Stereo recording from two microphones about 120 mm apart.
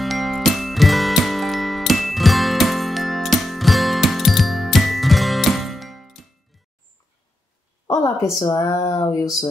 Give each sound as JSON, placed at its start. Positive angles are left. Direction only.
{"t": 0.0, "sound": "music", "side_deg": 0}
{"t": 7.8, "sound": "a woman's voice", "side_deg": 30}
{"t": 8.7, "sound": "a sound", "side_deg": 25}